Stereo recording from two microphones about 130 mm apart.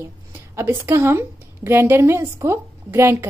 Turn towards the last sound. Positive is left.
turn(degrees=-20)  # may be behind; listen again after turning